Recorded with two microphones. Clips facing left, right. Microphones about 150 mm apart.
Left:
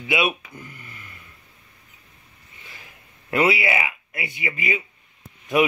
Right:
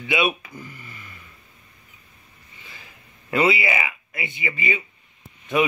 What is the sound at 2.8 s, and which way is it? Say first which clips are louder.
Speech: even; 10° left (ahead or behind).